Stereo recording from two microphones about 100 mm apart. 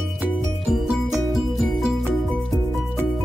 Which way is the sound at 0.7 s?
Centre (ahead or behind).